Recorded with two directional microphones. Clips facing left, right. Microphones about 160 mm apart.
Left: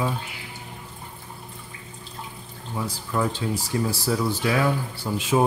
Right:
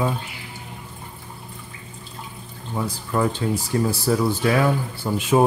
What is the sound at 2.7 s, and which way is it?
Speech, 55° right (ahead or behind).